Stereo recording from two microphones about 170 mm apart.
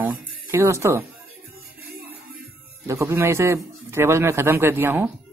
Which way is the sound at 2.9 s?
15° right (ahead or behind).